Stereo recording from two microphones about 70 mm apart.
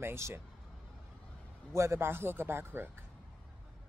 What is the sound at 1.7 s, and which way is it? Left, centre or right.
A woman's voice, right.